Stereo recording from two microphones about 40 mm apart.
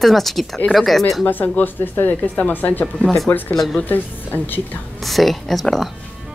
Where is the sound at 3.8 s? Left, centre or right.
Left.